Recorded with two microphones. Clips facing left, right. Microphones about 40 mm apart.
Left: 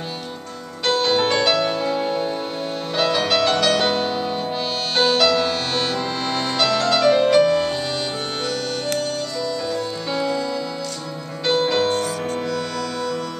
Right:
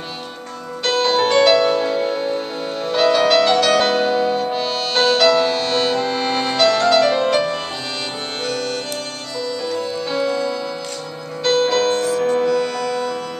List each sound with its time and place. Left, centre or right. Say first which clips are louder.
1.0 s music: right 6 dB; centre
6.1 s music: right 4 dB; centre
6.5 s music: right 5 dB; centre
11.5 s music: right 2 dB; centre
12.3 s music: right 7 dB; centre